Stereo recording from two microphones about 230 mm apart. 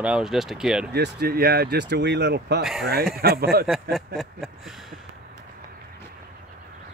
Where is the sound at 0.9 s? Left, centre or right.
Right.